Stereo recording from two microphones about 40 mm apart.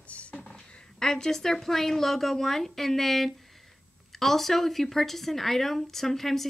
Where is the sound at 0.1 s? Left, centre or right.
Left.